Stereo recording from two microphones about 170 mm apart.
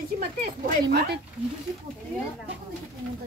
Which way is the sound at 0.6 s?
65° right (ahead or behind).